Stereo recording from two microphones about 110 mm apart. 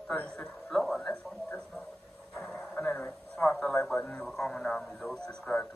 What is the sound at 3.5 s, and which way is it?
Radio, 10° left (ahead or behind).